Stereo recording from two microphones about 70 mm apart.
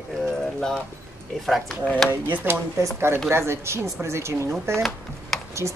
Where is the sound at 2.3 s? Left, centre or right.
Right.